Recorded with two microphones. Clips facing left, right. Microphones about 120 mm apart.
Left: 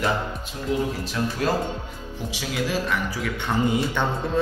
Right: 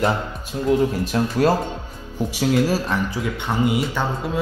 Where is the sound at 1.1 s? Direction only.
40° right (ahead or behind).